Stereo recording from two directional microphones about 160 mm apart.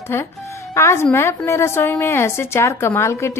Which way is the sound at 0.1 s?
15° left (ahead or behind).